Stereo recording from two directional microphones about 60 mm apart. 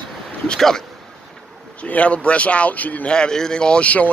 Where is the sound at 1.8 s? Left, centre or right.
Left.